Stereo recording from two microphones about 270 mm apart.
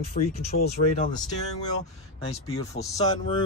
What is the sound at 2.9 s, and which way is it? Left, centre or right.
Speech, centre.